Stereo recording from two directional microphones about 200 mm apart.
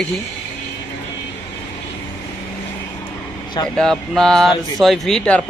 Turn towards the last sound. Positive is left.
turn(degrees=5)  # may be behind; listen again after turning